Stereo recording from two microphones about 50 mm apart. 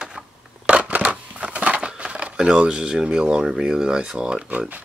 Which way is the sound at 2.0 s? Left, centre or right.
Right.